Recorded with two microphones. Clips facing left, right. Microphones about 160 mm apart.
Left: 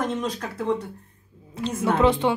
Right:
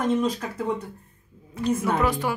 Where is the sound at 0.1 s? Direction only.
5° right (ahead or behind).